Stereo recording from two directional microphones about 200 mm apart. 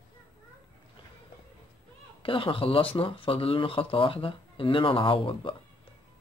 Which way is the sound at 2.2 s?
25° left (ahead or behind).